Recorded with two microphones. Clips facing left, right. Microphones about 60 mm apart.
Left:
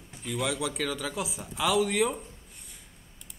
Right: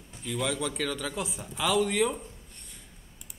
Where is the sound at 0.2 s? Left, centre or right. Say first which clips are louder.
Even; centre.